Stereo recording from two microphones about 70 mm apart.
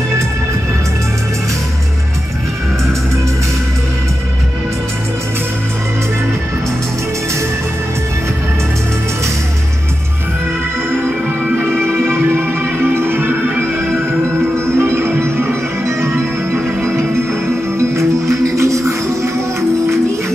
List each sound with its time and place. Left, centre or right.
11.7 s music: centre
12.1 s music: right
14.8 s music: right
16.5 s music: right
17.7 s music: right